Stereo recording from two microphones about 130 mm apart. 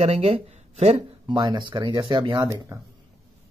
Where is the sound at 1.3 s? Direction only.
35° right (ahead or behind).